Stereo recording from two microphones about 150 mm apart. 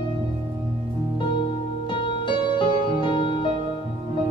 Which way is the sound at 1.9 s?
30° left (ahead or behind).